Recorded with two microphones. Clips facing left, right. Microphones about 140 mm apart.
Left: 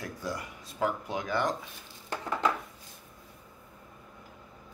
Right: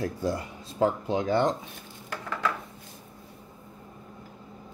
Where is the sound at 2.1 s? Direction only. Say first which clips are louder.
Left 1 dB; 25° left (ahead or behind).